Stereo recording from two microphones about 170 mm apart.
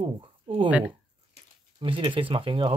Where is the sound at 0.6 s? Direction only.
10° right (ahead or behind).